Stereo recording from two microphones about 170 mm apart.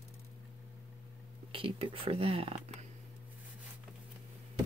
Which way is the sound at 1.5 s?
30° right (ahead or behind).